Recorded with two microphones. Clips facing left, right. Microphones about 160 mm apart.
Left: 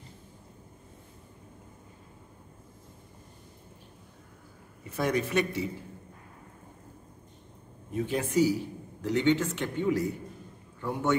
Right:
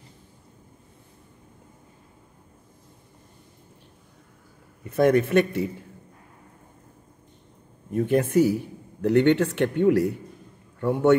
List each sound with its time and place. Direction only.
4.8 s a man's voice: 55° right (ahead or behind)
7.9 s a man's voice: 55° right (ahead or behind)